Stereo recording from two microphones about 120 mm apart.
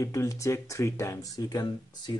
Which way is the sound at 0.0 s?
25° left (ahead or behind).